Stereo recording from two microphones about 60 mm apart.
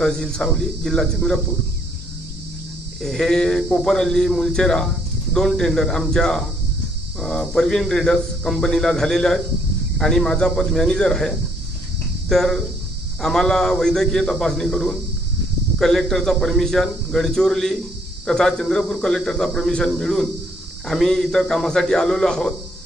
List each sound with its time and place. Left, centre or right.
0.0 s speech: centre
3.0 s speech: centre